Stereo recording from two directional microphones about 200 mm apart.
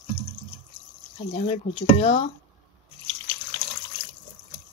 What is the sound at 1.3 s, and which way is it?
Speech, 30° left (ahead or behind).